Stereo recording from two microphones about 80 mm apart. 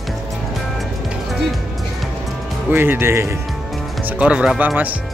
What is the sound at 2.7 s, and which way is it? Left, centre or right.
Speech, right.